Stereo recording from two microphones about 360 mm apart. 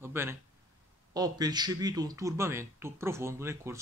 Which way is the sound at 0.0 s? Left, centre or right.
Centre.